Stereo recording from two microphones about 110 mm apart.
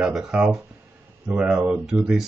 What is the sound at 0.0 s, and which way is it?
Speech, 5° right (ahead or behind).